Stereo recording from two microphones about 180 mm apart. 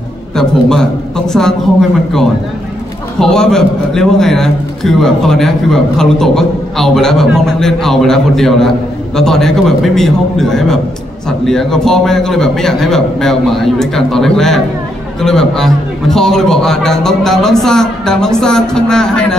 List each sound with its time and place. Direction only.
0.4 s a man's voice: 5° left (ahead or behind)